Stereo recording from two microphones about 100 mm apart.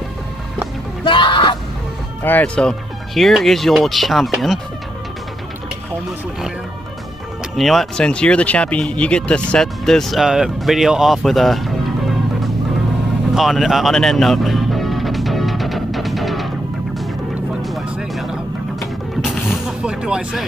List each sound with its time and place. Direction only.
1.0 s music: 55° left (ahead or behind)
2.2 s speech: 15° left (ahead or behind)
7.5 s speech: centre (ahead or behind)
13.3 s music: centre (ahead or behind)
17.6 s music: centre (ahead or behind)